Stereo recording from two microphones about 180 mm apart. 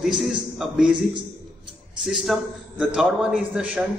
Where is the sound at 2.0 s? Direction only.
Centre (ahead or behind).